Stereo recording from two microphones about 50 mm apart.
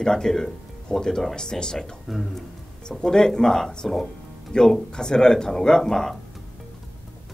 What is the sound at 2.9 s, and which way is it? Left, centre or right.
Speech, centre.